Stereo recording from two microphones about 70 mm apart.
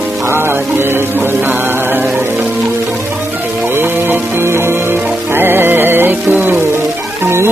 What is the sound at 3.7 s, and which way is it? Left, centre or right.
Music, right.